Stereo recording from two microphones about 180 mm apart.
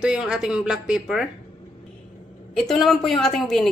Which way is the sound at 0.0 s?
5° right (ahead or behind).